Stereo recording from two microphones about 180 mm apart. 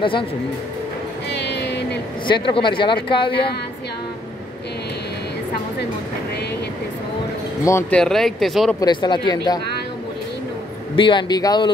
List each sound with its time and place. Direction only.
1.3 s vehicle: 70° left (ahead or behind)
2.2 s speech: 25° left (ahead or behind)
7.6 s speech: 15° left (ahead or behind)
8.0 s speech: centre (ahead or behind)
8.7 s speech: 25° left (ahead or behind)
11.0 s speech: 25° left (ahead or behind)